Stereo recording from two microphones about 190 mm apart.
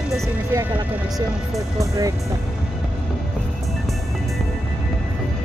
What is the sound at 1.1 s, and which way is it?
Speech, 20° right (ahead or behind).